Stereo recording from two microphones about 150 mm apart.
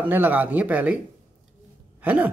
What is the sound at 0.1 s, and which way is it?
Speech, 10° right (ahead or behind).